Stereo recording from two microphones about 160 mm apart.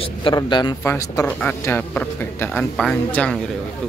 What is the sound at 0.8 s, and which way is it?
Speech, 15° left (ahead or behind).